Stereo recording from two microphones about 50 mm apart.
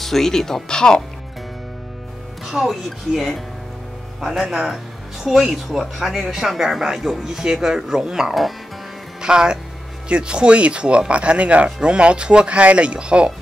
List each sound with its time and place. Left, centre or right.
0.0 s speech: centre
2.4 s speech: centre
9.2 s speech: centre